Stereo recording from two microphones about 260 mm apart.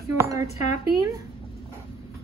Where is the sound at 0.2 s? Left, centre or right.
Centre.